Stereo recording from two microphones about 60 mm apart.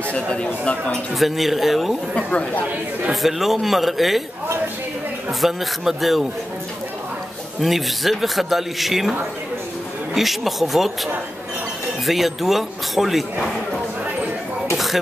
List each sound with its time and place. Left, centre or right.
0.1 s speech: centre
1.1 s a man's voice: centre
2.1 s speech: centre
3.1 s a man's voice: centre
5.4 s a man's voice: centre
7.6 s a man's voice: centre
10.1 s a man's voice: centre
12.1 s a man's voice: centre